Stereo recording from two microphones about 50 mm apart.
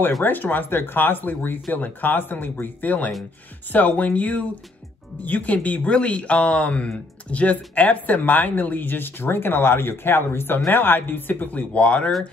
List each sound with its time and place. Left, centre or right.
0.2 s speech: left